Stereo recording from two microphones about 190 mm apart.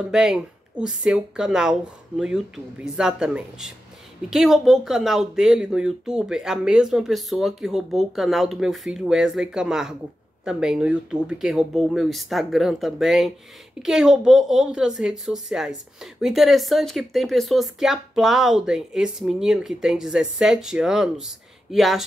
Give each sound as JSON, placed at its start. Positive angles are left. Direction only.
{"t": 0.1, "sound": "a woman's voice", "side_deg": -5}